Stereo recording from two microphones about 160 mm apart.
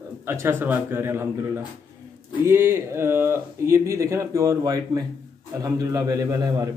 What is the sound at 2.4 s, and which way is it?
A man's voice, 15° right (ahead or behind).